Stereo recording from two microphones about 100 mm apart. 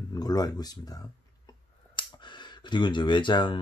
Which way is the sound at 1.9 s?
50° left (ahead or behind).